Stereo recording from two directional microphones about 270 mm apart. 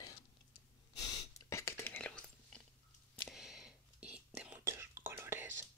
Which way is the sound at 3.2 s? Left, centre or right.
Centre.